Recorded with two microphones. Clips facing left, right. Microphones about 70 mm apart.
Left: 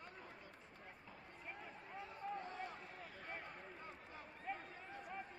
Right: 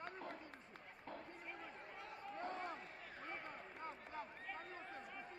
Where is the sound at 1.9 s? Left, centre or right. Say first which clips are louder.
Left 5 dB; right.